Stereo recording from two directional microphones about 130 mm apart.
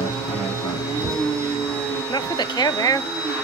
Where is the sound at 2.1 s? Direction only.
35° left (ahead or behind).